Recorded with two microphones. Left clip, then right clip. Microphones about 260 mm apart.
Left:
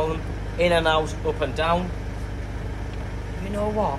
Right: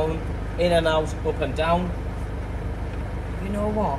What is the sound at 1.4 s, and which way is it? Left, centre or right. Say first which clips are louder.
Speech: even; centre.